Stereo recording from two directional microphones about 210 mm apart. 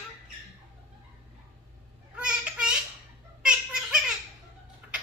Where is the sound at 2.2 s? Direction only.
5° right (ahead or behind).